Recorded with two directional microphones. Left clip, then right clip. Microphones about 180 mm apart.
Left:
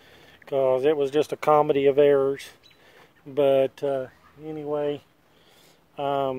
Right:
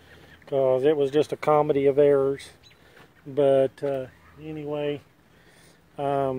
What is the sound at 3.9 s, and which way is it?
Speech, 20° left (ahead or behind).